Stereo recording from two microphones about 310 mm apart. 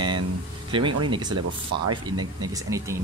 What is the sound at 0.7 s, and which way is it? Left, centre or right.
Speech, centre.